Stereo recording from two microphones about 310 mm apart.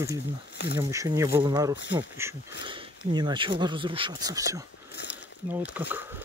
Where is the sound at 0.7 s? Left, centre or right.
Centre.